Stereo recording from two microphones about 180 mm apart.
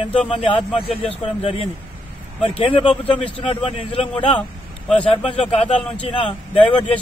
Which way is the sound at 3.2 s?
30° left (ahead or behind).